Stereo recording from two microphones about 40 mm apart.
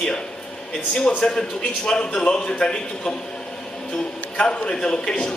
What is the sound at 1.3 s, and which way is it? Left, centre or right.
A man's voice, centre.